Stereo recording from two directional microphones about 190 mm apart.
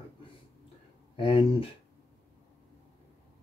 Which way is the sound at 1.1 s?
30° left (ahead or behind).